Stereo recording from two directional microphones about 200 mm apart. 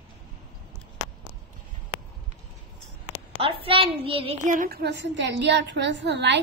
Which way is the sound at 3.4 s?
25° right (ahead or behind).